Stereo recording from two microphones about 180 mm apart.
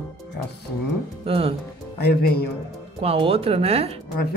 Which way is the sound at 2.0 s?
60° left (ahead or behind).